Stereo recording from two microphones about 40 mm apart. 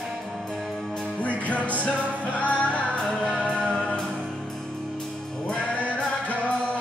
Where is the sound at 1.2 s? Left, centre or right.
Left.